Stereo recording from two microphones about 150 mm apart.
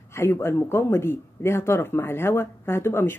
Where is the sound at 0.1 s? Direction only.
15° left (ahead or behind).